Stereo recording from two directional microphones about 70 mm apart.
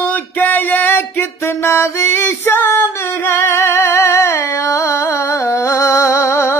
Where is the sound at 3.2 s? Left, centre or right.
Left.